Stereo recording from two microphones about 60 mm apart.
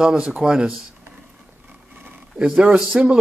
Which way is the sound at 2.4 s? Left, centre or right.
Centre.